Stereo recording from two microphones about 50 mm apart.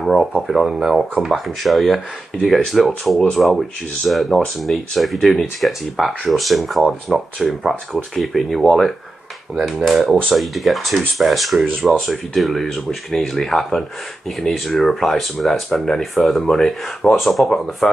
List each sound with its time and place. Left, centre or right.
0.0 s speech: centre